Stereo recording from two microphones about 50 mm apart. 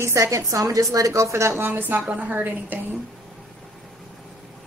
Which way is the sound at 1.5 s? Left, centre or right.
Right.